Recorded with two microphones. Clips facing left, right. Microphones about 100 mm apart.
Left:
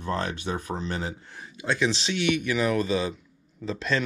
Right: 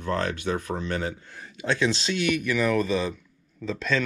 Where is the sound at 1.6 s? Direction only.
10° left (ahead or behind).